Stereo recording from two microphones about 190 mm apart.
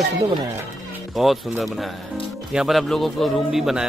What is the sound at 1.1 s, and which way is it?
Speech, centre (ahead or behind).